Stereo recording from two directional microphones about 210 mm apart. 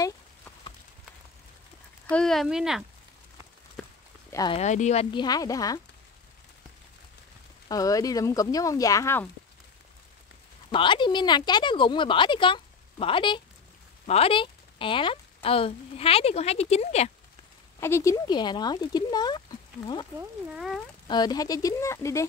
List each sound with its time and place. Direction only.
2.0 s speech: 5° left (ahead or behind)
4.3 s speech: 15° left (ahead or behind)
4.6 s speech: 35° left (ahead or behind)
5.1 s speech: 20° left (ahead or behind)
7.6 s speech: 15° left (ahead or behind)
10.7 s speech: 25° left (ahead or behind)
17.7 s speech: 10° left (ahead or behind)
20.5 s speech: centre (ahead or behind)
21.1 s speech: 20° left (ahead or behind)